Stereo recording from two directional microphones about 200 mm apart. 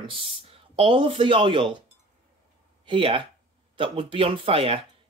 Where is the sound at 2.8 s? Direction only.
25° right (ahead or behind).